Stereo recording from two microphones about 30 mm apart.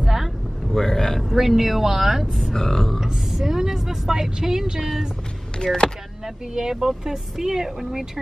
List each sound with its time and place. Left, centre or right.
0.7 s a sound: centre
1.3 s speech: centre
2.5 s speech: centre
3.0 s vehicle: centre
5.6 s speech: left
6.5 s speech: centre